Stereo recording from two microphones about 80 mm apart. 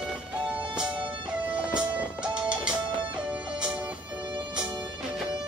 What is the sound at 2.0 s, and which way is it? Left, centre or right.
Music, centre.